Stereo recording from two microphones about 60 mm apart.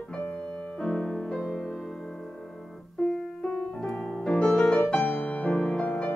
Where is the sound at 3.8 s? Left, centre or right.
Centre.